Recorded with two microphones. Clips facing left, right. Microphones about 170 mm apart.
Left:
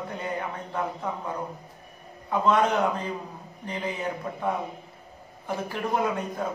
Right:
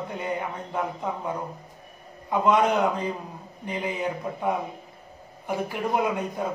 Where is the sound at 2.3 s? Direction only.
15° right (ahead or behind).